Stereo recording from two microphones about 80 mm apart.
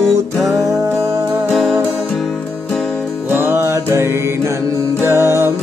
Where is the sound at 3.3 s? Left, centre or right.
Right.